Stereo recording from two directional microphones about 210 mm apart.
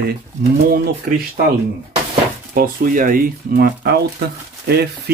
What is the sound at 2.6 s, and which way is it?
Speech, 40° right (ahead or behind).